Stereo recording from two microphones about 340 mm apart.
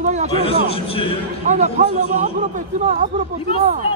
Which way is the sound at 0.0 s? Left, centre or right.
Centre.